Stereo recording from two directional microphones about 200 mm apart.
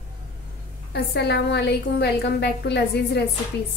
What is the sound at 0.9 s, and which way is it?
A woman's voice, 55° left (ahead or behind).